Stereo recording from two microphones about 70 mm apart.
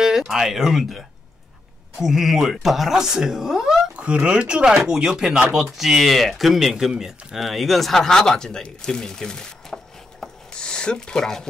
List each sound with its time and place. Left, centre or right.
0.0 s speech: centre
10.2 s rub: centre